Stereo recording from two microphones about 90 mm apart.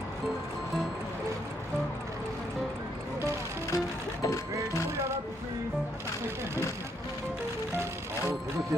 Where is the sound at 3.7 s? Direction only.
35° left (ahead or behind).